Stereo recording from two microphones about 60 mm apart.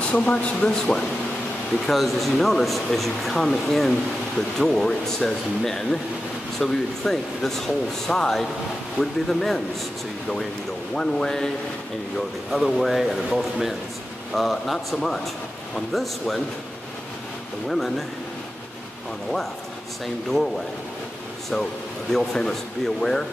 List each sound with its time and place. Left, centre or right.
0.1 s speech: left
1.9 s speech: centre
11.0 s speech: centre
17.6 s speech: centre
22.1 s speech: centre